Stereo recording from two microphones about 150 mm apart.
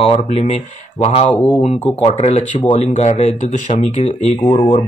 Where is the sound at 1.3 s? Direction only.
10° left (ahead or behind).